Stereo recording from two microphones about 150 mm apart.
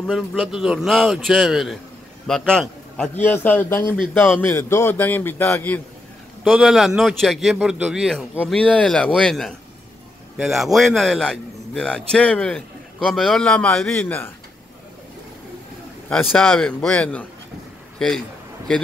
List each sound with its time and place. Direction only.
0.0 s a man's voice: centre (ahead or behind)
6.4 s a man's voice: centre (ahead or behind); by 14.3 s 15° left (ahead or behind)
16.3 s a man's voice: 5° left (ahead or behind)